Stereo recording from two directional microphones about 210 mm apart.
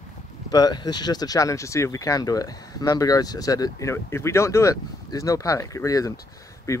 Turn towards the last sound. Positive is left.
turn(degrees=15)  # may be behind; listen again after turning